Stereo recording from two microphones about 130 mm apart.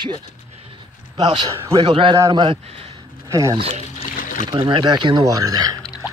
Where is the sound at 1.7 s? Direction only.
40° right (ahead or behind).